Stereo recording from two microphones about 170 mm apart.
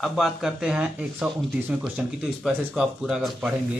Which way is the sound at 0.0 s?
Centre (ahead or behind).